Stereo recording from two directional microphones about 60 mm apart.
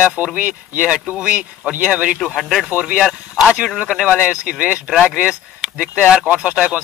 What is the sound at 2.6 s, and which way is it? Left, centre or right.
Speech, centre.